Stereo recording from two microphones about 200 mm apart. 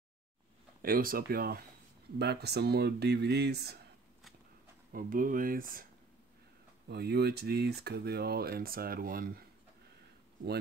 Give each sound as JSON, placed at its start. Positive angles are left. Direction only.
{"t": 0.8, "sound": "speech", "side_deg": -45}
{"t": 4.9, "sound": "speech", "side_deg": -45}
{"t": 6.9, "sound": "speech", "side_deg": -55}